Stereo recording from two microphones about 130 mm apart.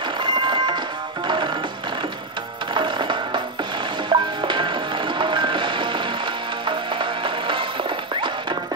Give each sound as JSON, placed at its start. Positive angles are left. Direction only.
{"t": 0.2, "sound": "music", "side_deg": -35}
{"t": 2.7, "sound": "music", "side_deg": -35}